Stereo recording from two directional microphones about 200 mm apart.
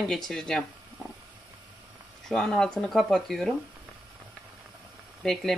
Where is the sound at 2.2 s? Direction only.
Centre (ahead or behind).